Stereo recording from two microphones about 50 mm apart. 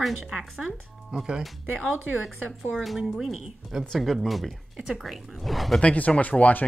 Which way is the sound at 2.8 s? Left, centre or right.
Centre.